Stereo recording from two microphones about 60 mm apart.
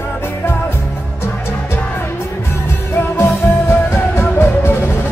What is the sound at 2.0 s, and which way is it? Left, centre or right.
Music, left.